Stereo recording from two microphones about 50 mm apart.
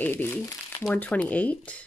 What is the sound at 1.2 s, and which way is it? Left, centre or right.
Speech, left.